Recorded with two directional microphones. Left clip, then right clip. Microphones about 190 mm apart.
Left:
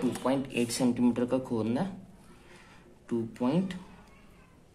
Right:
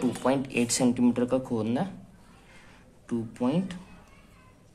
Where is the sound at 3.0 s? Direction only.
5° right (ahead or behind).